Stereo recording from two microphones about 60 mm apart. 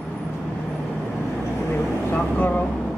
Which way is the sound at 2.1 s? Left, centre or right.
Left.